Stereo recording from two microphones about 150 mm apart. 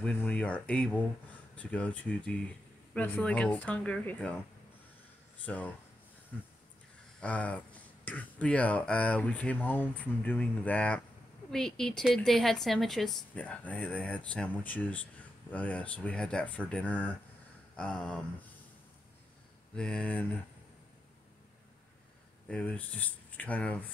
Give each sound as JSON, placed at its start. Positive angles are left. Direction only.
{"t": 0.0, "sound": "speech", "side_deg": 10}
{"t": 5.4, "sound": "speech", "side_deg": 10}
{"t": 7.2, "sound": "a woman's voice", "side_deg": 10}
{"t": 19.7, "sound": "speech", "side_deg": 5}
{"t": 22.5, "sound": "speech", "side_deg": 10}